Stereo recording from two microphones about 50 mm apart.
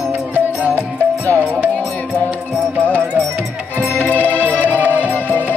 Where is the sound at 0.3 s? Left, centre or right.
Left.